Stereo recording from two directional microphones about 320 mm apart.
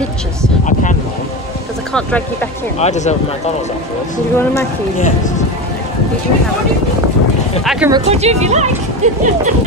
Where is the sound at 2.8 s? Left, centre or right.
Left.